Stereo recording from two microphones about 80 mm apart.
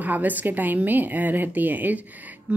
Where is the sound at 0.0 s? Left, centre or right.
Right.